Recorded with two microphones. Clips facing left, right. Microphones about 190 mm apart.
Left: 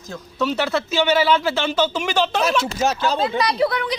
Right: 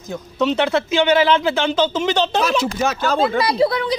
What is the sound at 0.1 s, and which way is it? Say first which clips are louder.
Speech: right 4 dB; 20° right (ahead or behind).